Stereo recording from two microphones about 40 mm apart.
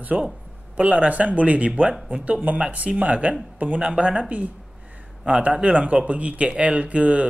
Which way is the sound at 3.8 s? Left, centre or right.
Right.